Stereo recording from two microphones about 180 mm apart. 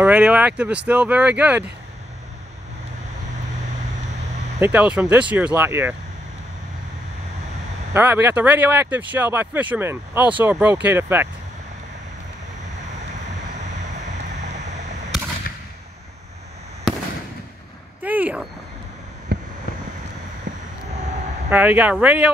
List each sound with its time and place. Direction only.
0.0 s speech: 5° right (ahead or behind)
4.6 s speech: 10° right (ahead or behind)
7.9 s speech: 10° right (ahead or behind)
15.5 s fireworks: 60° left (ahead or behind)
18.0 s a sound: 10° right (ahead or behind)
19.3 s vehicle: 65° right (ahead or behind)
21.5 s speech: 10° right (ahead or behind)